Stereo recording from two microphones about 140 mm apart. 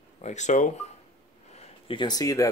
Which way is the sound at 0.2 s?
55° left (ahead or behind).